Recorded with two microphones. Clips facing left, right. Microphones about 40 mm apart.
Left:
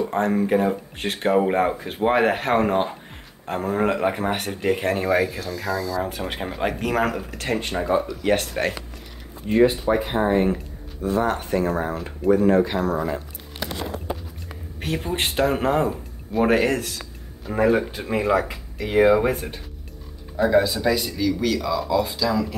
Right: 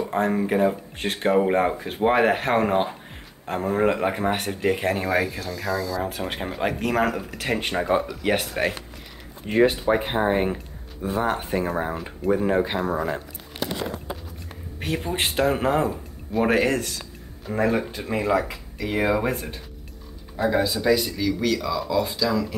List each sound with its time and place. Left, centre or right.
0.0 s speech: centre
9.5 s speech: right; by 13.1 s centre
14.8 s speech: centre